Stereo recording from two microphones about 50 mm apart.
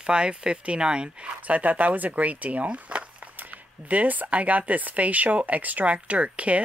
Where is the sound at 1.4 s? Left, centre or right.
Right.